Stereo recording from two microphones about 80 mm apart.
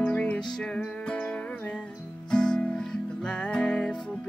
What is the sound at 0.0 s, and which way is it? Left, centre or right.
Music, centre.